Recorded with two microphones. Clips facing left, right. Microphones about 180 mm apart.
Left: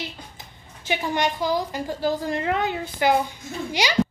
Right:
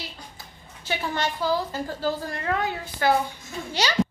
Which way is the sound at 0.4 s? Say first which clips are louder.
Left 1 dB; 15° left (ahead or behind).